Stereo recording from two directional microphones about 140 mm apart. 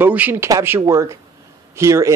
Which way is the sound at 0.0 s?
10° right (ahead or behind).